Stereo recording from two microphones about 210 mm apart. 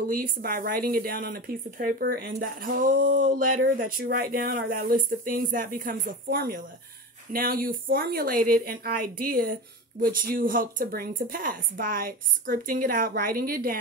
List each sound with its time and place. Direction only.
0.1 s speech: 45° right (ahead or behind)